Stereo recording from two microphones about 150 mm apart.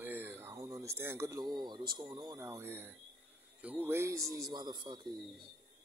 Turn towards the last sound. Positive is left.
turn(degrees=-30)  # may be behind; listen again after turning